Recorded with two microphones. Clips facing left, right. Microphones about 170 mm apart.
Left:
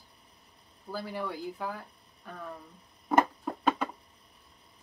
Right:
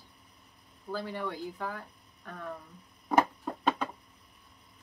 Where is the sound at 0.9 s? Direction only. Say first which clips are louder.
Even; 10° left (ahead or behind).